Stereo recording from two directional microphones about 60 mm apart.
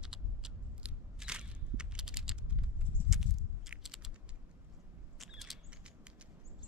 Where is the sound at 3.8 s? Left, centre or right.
Centre.